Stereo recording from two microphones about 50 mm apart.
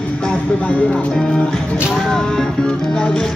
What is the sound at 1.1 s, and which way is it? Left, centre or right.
Speech, centre.